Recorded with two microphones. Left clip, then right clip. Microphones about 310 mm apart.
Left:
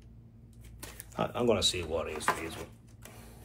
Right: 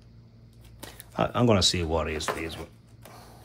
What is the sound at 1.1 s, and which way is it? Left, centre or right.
Speech, right.